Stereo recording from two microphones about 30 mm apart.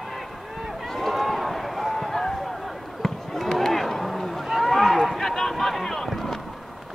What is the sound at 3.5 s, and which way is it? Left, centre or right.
Run, centre.